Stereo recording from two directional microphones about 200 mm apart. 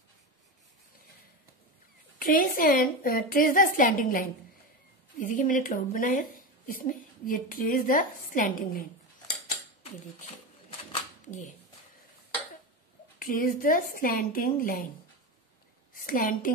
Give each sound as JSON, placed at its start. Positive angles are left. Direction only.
{"t": 2.1, "sound": "a woman's voice", "side_deg": 45}
{"t": 13.2, "sound": "a woman's voice", "side_deg": 45}
{"t": 15.9, "sound": "a woman's voice", "side_deg": 45}